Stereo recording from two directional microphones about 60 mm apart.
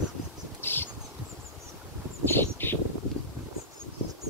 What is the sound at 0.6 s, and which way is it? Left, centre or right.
Insect, left.